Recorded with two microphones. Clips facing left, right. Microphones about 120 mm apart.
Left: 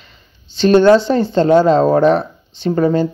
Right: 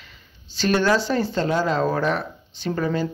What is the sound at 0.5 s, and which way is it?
Speech, 25° left (ahead or behind).